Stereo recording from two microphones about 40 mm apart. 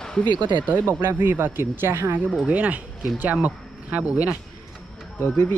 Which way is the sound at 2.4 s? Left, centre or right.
Right.